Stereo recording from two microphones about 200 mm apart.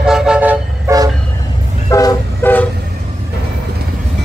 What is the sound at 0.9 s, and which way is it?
Train, 15° right (ahead or behind).